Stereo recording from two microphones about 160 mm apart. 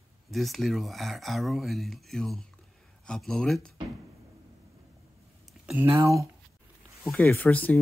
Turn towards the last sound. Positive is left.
turn(degrees=10)  # may be behind; listen again after turning